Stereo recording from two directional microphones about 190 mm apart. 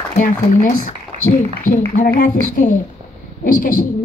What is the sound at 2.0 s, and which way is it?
A woman's voice, 40° left (ahead or behind).